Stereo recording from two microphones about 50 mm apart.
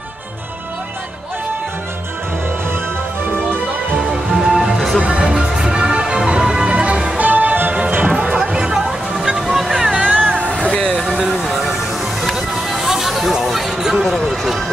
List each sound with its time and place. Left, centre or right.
4.1 s music: centre
5.0 s music: centre
7.2 s music: right
8.4 s music: centre
9.9 s music: right
10.6 s vehicle: centre
11.1 s vehicle: centre
12.2 s music: centre